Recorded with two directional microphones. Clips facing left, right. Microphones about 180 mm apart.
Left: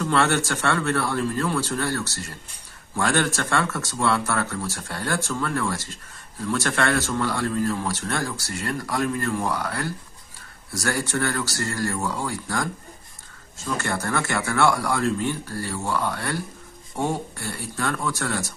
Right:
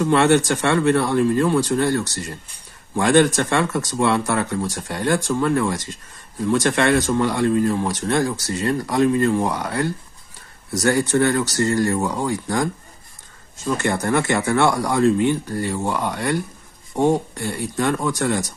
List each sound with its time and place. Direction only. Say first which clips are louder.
0.0 s speech: right 6 dB; 15° right (ahead or behind)